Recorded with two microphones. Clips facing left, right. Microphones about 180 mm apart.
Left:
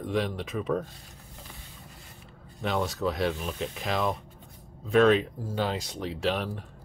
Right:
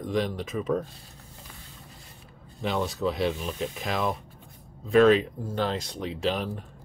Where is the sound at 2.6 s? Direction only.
Centre (ahead or behind).